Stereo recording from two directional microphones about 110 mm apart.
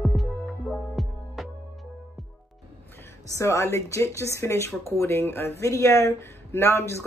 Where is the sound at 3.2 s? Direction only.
30° left (ahead or behind).